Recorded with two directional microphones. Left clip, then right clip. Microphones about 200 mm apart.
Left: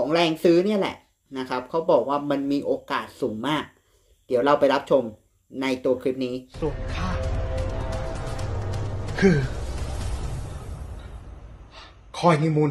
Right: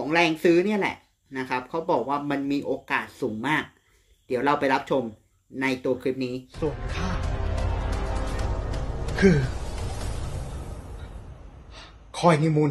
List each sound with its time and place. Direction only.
0.0 s speech: centre (ahead or behind)
5.6 s music: 5° right (ahead or behind)
11.7 s a sound: centre (ahead or behind)